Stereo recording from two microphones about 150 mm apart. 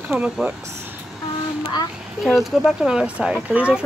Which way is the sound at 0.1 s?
10° right (ahead or behind).